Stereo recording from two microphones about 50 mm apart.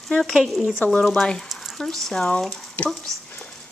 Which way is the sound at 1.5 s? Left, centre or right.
Centre.